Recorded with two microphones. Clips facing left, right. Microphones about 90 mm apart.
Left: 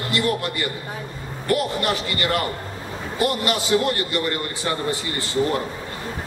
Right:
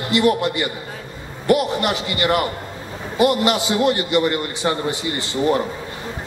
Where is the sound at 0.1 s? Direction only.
20° right (ahead or behind).